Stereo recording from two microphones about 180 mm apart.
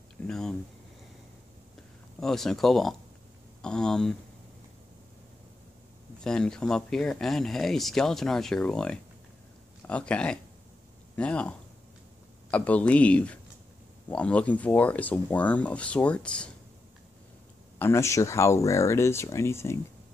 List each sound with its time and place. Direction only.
0.3 s speech: 5° left (ahead or behind)
2.1 s speech: centre (ahead or behind)
6.2 s speech: 5° left (ahead or behind)
17.7 s speech: 15° left (ahead or behind)